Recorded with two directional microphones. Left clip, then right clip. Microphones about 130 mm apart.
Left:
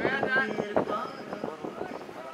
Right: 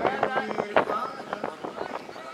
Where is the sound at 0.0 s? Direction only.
35° right (ahead or behind).